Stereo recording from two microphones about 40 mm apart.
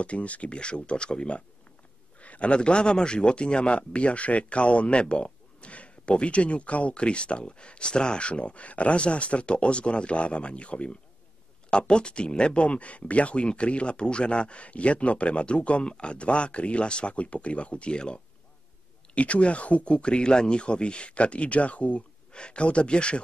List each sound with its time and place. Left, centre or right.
0.0 s a man's voice: left